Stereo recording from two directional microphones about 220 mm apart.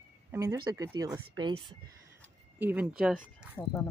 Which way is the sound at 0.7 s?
15° right (ahead or behind).